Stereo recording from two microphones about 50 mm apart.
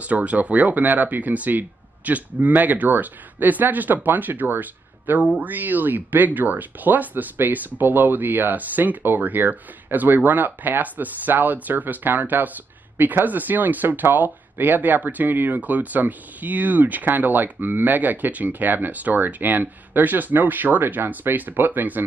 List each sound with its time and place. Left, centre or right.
0.0 s speech: right